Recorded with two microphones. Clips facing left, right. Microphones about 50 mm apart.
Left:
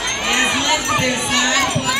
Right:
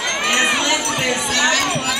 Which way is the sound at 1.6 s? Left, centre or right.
Centre.